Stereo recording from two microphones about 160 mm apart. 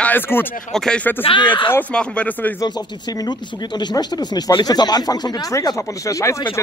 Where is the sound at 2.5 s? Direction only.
25° left (ahead or behind).